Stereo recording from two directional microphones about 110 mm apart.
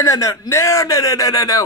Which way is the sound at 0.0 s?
30° left (ahead or behind).